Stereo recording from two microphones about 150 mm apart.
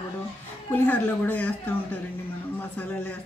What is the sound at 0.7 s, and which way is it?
Speech, 10° left (ahead or behind).